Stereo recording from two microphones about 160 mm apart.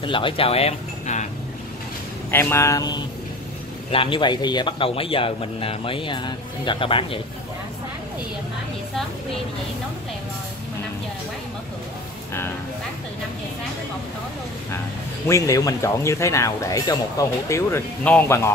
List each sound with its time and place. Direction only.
0.0 s a man's voice: 30° left (ahead or behind)
2.3 s speech: 15° left (ahead or behind)
3.9 s a man's voice: 30° left (ahead or behind)
15.2 s speech: 20° left (ahead or behind)